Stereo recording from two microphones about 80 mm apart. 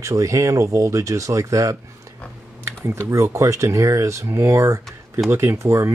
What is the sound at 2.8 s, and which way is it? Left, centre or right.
Speech, right.